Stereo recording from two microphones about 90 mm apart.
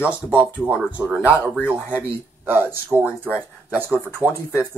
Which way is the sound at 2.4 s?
20° right (ahead or behind).